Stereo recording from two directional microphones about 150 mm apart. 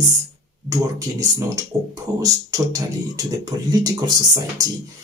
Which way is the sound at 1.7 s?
25° right (ahead or behind).